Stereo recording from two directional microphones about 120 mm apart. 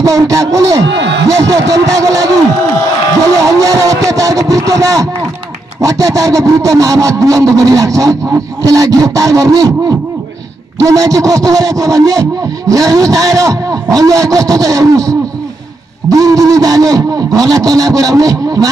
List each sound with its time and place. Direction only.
0.0 s a man's voice: 30° right (ahead or behind)
3.6 s a man's voice: 30° right (ahead or behind)